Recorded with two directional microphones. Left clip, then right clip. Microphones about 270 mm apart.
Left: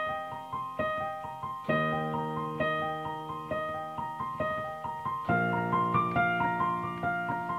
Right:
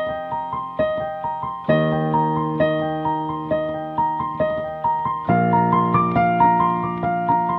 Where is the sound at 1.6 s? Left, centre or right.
Centre.